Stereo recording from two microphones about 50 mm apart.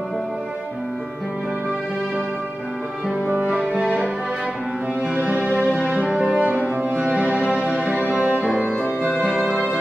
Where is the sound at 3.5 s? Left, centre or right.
Centre.